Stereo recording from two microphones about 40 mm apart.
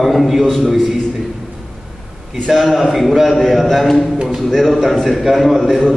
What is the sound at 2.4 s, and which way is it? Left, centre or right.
A man's voice, centre.